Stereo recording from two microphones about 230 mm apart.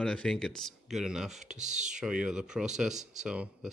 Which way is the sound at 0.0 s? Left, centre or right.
Centre.